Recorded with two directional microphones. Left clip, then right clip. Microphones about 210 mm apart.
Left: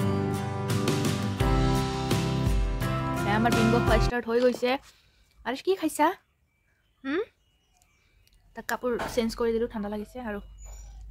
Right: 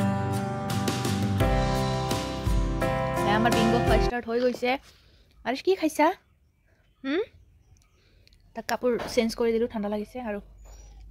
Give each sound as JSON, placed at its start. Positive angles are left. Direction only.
{"t": 0.0, "sound": "music", "side_deg": 0}
{"t": 3.3, "sound": "speech", "side_deg": -15}
{"t": 3.8, "sound": "speech", "side_deg": 0}
{"t": 5.4, "sound": "speech", "side_deg": -15}